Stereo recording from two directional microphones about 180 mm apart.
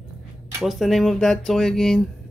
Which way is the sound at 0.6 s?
Centre (ahead or behind).